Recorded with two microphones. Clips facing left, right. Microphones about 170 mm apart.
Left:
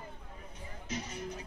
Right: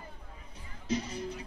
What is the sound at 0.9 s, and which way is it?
Speech, 30° right (ahead or behind).